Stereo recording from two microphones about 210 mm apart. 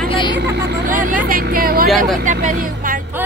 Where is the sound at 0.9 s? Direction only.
40° right (ahead or behind).